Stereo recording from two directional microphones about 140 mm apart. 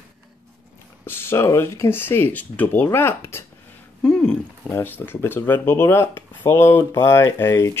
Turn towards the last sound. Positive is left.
turn(degrees=20)  # may be behind; listen again after turning